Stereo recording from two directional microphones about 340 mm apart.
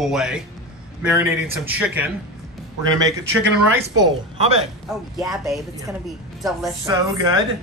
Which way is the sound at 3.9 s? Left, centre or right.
Centre.